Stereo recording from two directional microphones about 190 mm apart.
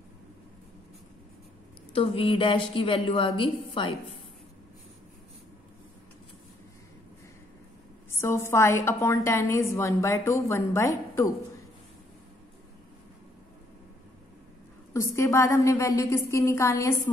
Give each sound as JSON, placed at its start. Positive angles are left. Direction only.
{"t": 2.0, "sound": "a woman's voice", "side_deg": 30}
{"t": 8.1, "sound": "a woman's voice", "side_deg": 15}
{"t": 14.9, "sound": "a woman's voice", "side_deg": 15}